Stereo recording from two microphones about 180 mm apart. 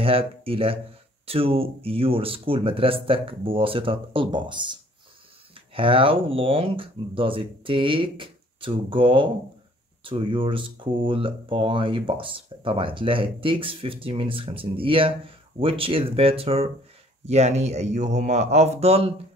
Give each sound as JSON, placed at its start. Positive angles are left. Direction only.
{"t": 0.0, "sound": "speech", "side_deg": -30}
{"t": 5.8, "sound": "speech", "side_deg": -30}